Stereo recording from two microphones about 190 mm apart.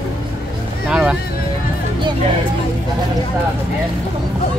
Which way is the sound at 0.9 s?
5° right (ahead or behind).